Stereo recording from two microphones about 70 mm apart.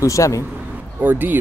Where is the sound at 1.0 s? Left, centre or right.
Right.